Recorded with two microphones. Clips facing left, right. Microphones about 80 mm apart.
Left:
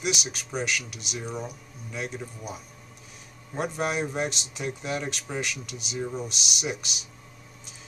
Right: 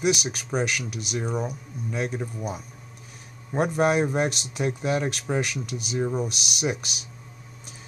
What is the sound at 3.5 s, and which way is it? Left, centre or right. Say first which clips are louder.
Speech: right 6 dB; right.